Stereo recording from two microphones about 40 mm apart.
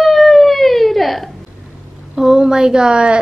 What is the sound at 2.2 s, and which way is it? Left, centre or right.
Speech, centre.